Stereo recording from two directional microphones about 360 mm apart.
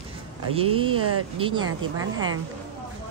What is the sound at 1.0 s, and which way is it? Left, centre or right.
Speech, right.